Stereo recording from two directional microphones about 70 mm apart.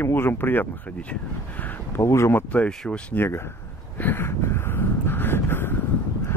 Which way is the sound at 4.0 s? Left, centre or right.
Left.